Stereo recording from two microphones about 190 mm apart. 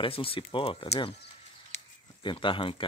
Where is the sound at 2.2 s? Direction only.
25° left (ahead or behind).